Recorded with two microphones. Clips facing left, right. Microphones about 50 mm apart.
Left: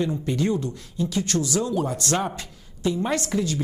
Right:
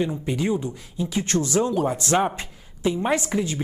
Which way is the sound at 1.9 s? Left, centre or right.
Centre.